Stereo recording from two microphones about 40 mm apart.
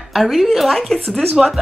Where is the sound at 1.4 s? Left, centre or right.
Centre.